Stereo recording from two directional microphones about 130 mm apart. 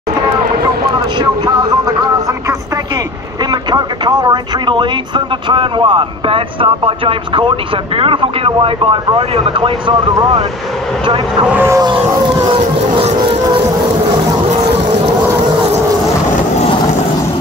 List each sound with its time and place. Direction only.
0.8 s vehicle: 35° right (ahead or behind)
3.4 s speech: 30° right (ahead or behind)
11.1 s speech: 40° right (ahead or behind)
11.4 s speech: 15° right (ahead or behind)
12.9 s music: 45° right (ahead or behind)